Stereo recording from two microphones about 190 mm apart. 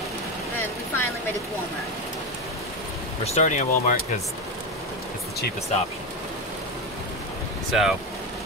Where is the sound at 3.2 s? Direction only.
35° left (ahead or behind).